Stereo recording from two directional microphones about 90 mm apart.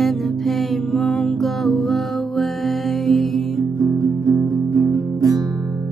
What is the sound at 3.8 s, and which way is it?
Guitar, 40° right (ahead or behind).